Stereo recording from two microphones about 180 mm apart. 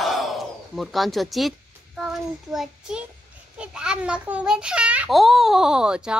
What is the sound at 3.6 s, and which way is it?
A child's voice, 5° right (ahead or behind).